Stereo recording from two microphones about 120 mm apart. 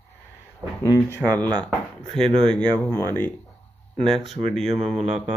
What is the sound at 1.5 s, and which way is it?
Speech, 10° left (ahead or behind).